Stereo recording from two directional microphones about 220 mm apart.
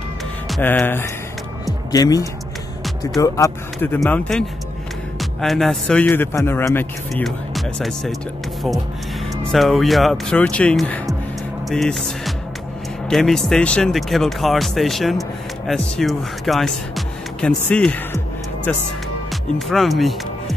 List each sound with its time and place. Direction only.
0.5 s speech: 10° left (ahead or behind)
9.5 s speech: centre (ahead or behind)